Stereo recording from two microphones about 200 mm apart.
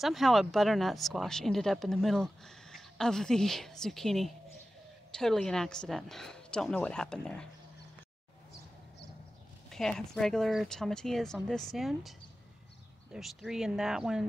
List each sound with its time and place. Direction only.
0.0 s speech: centre (ahead or behind)
9.7 s speech: centre (ahead or behind)